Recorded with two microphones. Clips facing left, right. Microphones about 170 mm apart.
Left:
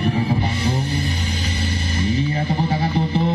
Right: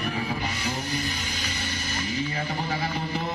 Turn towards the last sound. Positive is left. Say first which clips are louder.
# left 8 dB
turn(degrees=30)  # may be behind; listen again after turning